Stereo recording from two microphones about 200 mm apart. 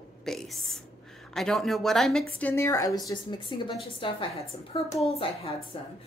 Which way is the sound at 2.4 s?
15° left (ahead or behind).